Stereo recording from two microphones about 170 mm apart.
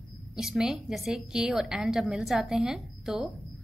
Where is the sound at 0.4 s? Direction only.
5° right (ahead or behind).